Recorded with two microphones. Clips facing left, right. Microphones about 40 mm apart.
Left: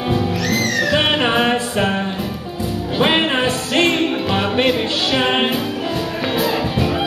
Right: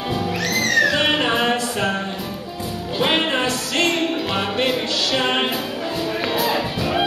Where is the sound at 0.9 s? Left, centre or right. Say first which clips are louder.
Left 3 dB; left.